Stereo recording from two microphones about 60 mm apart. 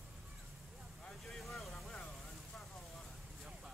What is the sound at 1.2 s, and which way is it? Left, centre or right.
Vehicle, centre.